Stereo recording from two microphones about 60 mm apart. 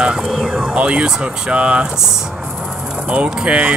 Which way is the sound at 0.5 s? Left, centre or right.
Centre.